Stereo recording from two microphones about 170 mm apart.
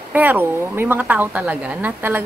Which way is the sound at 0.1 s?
10° right (ahead or behind).